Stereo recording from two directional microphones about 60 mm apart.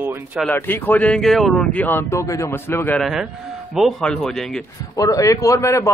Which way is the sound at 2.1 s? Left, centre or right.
Left.